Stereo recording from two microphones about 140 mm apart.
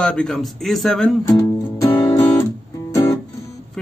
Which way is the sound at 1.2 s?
25° left (ahead or behind).